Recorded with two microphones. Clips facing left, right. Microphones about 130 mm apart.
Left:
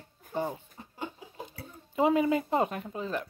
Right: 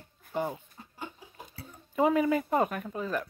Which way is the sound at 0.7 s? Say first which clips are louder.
Left 3 dB; 25° left (ahead or behind).